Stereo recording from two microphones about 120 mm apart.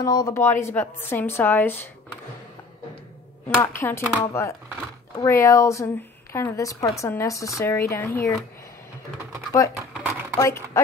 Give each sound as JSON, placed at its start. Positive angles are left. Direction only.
{"t": 0.0, "sound": "a woman's voice", "side_deg": 30}
{"t": 3.4, "sound": "a woman's voice", "side_deg": 15}
{"t": 10.4, "sound": "a woman's voice", "side_deg": 25}